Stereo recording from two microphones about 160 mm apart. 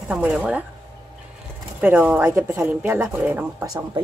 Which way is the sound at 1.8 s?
10° right (ahead or behind).